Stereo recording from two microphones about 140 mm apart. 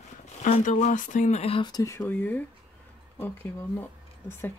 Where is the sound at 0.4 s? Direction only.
60° left (ahead or behind); by 1.7 s 45° left (ahead or behind).